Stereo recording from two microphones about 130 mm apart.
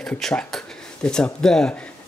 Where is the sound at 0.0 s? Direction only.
5° left (ahead or behind).